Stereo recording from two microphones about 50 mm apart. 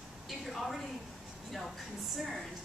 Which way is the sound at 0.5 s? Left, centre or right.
Centre.